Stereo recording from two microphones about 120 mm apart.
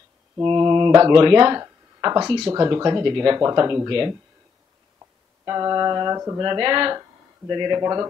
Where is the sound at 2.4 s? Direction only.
25° right (ahead or behind).